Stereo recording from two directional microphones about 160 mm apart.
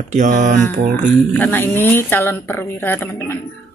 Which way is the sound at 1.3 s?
10° left (ahead or behind).